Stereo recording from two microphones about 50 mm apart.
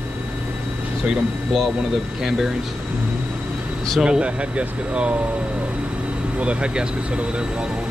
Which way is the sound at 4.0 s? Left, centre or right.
Right.